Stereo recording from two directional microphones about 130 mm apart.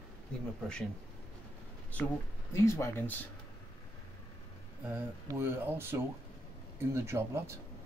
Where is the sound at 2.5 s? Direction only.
20° left (ahead or behind).